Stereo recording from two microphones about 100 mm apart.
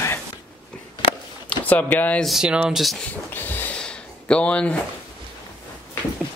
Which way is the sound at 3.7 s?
10° left (ahead or behind).